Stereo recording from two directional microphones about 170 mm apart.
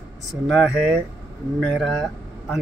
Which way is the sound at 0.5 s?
Centre (ahead or behind).